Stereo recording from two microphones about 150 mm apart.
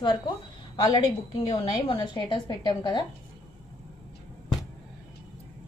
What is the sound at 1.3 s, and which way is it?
A woman's voice, 35° left (ahead or behind).